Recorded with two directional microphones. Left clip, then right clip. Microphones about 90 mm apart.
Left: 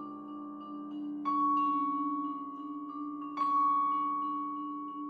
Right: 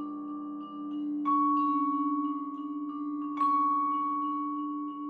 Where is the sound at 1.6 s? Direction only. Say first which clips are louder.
Right 2 dB; 5° right (ahead or behind).